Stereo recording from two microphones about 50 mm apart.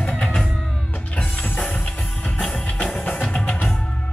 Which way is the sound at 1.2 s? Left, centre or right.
Left.